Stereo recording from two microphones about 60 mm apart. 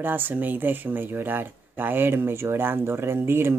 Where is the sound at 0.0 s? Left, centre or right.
Right.